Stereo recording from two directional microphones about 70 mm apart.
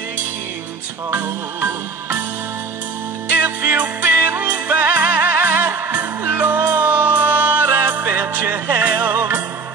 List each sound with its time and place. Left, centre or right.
3.3 s music: right